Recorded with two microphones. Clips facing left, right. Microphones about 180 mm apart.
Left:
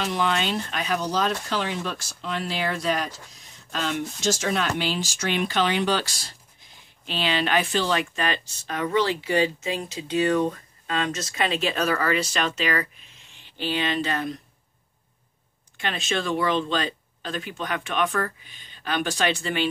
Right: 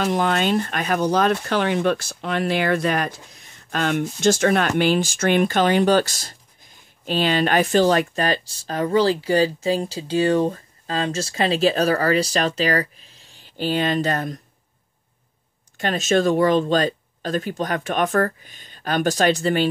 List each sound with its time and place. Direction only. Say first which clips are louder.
0.0 s speech: right 5 dB; 50° right (ahead or behind)
15.8 s speech: right 9 dB; 45° right (ahead or behind)